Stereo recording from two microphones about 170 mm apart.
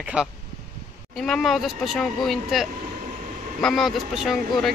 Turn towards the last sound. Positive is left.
turn(degrees=0)  # may be behind; listen again after turning